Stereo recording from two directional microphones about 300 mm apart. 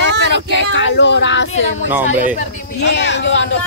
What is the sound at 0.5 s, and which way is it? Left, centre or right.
Speech, left.